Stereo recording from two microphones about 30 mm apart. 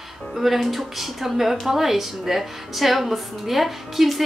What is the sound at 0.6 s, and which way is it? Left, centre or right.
A woman's voice, centre.